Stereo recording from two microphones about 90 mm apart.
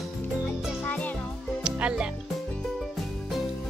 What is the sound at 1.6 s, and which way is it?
Music, 10° right (ahead or behind).